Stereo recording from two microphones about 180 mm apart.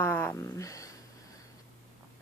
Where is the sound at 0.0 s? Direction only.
10° left (ahead or behind).